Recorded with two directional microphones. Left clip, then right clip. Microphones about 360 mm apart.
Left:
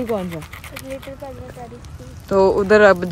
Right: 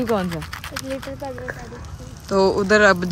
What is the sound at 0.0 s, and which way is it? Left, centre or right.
Speech, centre.